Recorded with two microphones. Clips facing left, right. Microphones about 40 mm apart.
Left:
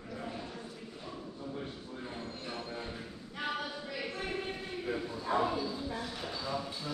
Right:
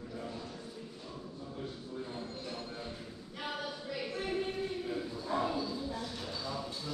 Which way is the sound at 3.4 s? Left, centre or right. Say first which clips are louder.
Left 2 dB; centre.